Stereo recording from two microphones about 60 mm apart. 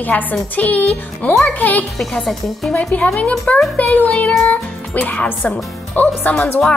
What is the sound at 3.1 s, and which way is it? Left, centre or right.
Speech, left.